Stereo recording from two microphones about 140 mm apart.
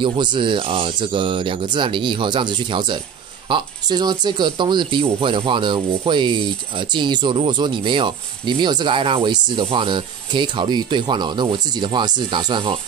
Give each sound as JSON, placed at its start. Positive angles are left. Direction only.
{"t": 0.0, "sound": "speech", "side_deg": -35}